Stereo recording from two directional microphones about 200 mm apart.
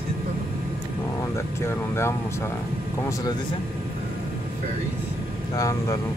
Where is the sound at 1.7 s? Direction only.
10° left (ahead or behind).